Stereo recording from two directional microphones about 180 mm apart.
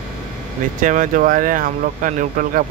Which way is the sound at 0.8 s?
45° right (ahead or behind).